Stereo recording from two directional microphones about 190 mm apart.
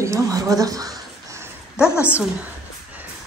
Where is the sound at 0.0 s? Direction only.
15° right (ahead or behind).